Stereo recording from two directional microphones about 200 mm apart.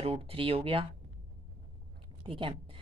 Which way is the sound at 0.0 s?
25° right (ahead or behind).